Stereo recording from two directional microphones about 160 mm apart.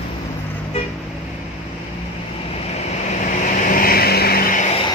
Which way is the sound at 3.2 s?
55° left (ahead or behind).